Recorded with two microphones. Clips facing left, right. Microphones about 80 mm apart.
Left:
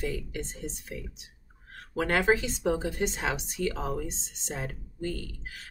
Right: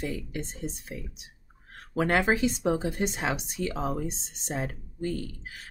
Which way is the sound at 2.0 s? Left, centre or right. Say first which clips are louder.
Right 1 dB; centre.